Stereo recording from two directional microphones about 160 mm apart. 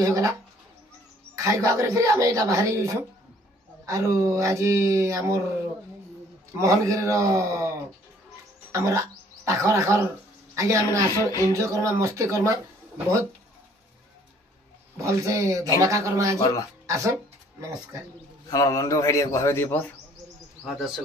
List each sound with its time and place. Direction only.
0.0 s speech: 20° right (ahead or behind)
1.3 s speech: 20° right (ahead or behind)
6.6 s speech: 20° right (ahead or behind)
8.7 s a woman's voice: 20° right (ahead or behind)
15.0 s speech: 20° right (ahead or behind)
18.5 s a man's voice: 20° left (ahead or behind)
20.6 s speech: centre (ahead or behind)